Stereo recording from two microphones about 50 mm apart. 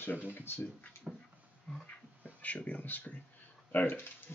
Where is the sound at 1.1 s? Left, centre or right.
Centre.